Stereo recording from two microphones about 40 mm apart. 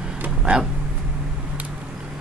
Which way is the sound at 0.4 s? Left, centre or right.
Right.